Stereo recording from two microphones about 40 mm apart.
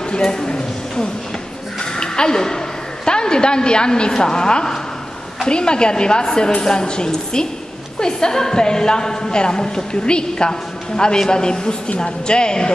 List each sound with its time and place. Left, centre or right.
0.1 s speech: centre
1.8 s a sound: centre
3.1 s a woman's voice: left